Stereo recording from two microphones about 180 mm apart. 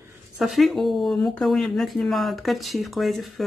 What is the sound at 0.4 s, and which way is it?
Speech, centre (ahead or behind).